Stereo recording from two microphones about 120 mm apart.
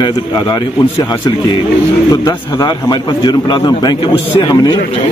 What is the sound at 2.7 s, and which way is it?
A man's voice, 40° left (ahead or behind).